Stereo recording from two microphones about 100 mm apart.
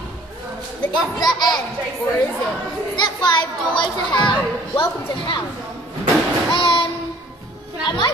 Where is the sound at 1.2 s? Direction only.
45° left (ahead or behind).